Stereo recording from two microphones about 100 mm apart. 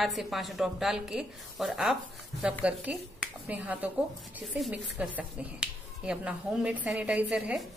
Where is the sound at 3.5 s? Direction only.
15° right (ahead or behind).